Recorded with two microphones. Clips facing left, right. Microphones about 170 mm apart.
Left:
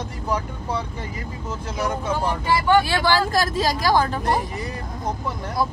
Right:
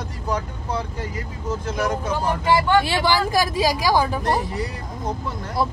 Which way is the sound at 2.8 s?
15° right (ahead or behind).